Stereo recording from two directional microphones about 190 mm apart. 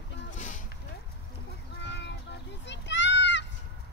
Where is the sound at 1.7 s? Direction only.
65° left (ahead or behind).